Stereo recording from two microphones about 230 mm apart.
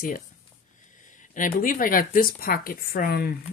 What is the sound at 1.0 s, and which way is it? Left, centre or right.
Speech, left.